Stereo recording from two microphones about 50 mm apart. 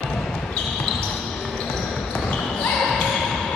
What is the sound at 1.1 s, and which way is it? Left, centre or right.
Basketball bounce, centre.